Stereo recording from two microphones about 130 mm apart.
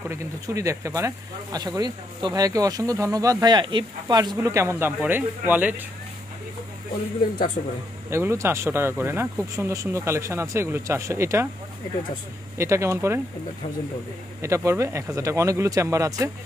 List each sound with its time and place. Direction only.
0.1 s speech: 25° right (ahead or behind)
4.4 s speech: 20° right (ahead or behind)
8.1 s speech: 20° right (ahead or behind)
12.5 s speech: 20° right (ahead or behind)
14.4 s speech: 25° right (ahead or behind)